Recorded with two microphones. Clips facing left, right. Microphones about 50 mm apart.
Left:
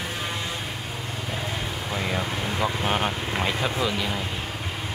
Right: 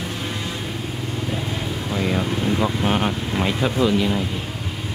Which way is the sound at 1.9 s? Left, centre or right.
Centre.